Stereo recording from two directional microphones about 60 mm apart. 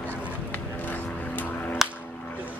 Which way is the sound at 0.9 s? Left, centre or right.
Left.